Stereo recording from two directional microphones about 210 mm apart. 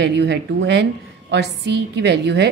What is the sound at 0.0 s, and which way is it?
A woman's voice, 55° right (ahead or behind).